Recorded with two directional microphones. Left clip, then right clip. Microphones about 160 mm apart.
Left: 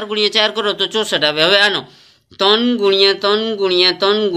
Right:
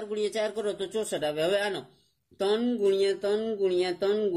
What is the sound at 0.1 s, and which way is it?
A man's voice, 45° right (ahead or behind).